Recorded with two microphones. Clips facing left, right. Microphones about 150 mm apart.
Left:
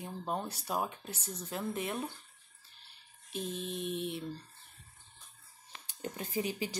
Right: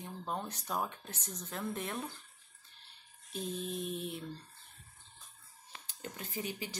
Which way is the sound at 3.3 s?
Centre (ahead or behind).